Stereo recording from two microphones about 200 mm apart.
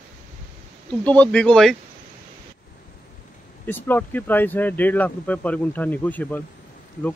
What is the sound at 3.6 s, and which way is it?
Speech, 10° left (ahead or behind).